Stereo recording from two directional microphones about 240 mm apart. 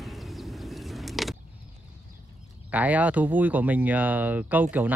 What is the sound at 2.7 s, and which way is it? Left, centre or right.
Speech, centre.